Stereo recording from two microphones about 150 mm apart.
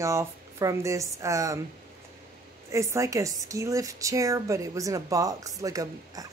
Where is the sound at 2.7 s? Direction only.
20° right (ahead or behind).